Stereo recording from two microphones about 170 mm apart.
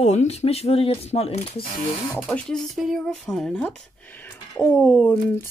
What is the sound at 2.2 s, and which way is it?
Speech, 5° left (ahead or behind).